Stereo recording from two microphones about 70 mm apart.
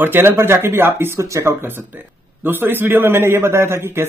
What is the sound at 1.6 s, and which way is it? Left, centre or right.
A man's voice, right.